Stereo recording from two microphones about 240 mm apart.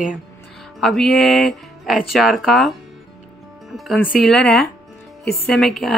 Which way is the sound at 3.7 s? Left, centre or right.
Centre.